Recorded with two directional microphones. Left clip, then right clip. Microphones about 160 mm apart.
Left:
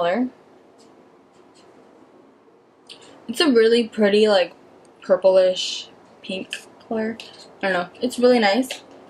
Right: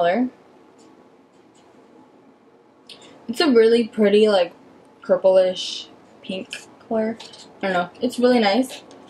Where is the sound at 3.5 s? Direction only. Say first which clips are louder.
Right 2 dB; centre (ahead or behind).